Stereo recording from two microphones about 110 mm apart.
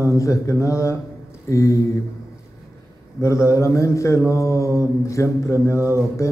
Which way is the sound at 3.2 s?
25° left (ahead or behind).